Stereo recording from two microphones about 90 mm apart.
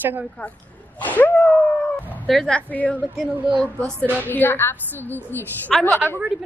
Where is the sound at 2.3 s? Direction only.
5° left (ahead or behind).